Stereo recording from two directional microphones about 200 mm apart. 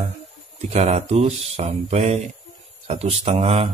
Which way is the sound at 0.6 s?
35° right (ahead or behind).